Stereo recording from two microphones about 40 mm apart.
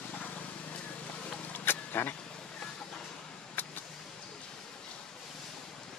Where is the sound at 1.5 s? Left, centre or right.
Left.